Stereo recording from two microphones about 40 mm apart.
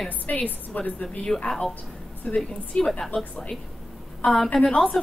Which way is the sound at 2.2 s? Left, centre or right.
Left.